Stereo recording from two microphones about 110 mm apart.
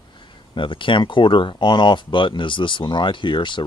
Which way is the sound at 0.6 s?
50° left (ahead or behind).